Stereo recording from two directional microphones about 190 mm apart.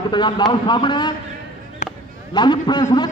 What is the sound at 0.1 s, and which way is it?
A man's voice, 25° left (ahead or behind).